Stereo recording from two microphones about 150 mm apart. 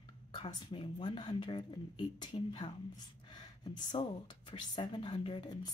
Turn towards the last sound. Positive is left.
turn(degrees=30)  # may be behind; listen again after turning